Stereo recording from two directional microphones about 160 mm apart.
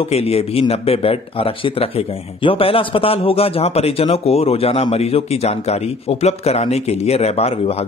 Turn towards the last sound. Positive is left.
turn(degrees=40)  # may be behind; listen again after turning